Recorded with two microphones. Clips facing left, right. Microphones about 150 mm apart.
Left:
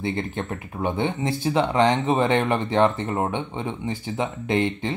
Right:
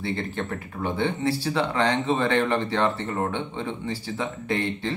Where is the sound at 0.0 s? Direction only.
20° left (ahead or behind).